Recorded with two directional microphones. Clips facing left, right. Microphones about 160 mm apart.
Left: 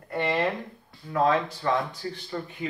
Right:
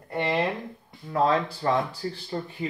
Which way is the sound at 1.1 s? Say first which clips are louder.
Even; 35° right (ahead or behind).